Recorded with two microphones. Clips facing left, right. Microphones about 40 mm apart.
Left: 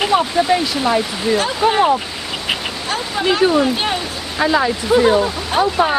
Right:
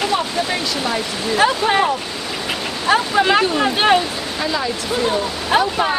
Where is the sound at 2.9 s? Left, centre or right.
Right.